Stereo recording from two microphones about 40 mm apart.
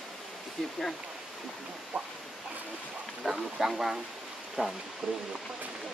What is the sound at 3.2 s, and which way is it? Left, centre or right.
Speech, centre.